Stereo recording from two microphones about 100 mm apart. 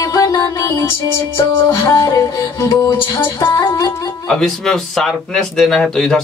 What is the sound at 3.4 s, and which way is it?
Music, 50° left (ahead or behind).